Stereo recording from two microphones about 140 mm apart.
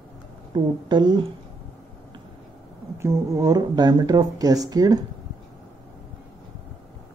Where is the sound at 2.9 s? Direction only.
20° right (ahead or behind).